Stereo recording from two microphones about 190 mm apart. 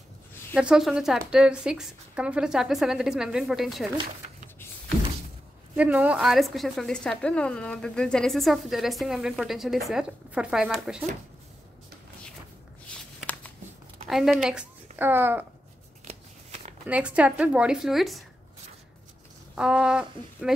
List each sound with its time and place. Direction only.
0.6 s a woman's voice: 5° right (ahead or behind)
5.8 s a woman's voice: 5° right (ahead or behind)
13.2 s a sound: 10° left (ahead or behind)
14.0 s speech: centre (ahead or behind)
16.1 s shuffling cards: 35° right (ahead or behind)
16.8 s a woman's voice: 5° right (ahead or behind)
19.5 s a woman's voice: 5° right (ahead or behind)